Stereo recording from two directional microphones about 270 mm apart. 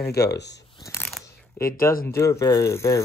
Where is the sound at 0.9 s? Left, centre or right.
Centre.